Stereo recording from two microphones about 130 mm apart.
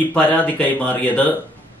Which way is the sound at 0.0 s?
15° left (ahead or behind).